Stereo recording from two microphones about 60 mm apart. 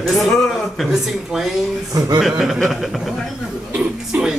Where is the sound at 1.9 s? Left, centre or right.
Right.